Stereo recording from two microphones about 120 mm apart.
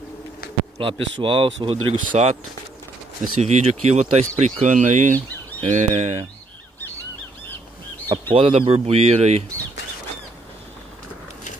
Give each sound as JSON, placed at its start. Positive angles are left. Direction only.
{"t": 0.7, "sound": "speech", "side_deg": -45}
{"t": 3.3, "sound": "speech", "side_deg": -65}
{"t": 5.6, "sound": "speech", "side_deg": -65}
{"t": 8.1, "sound": "speech", "side_deg": -50}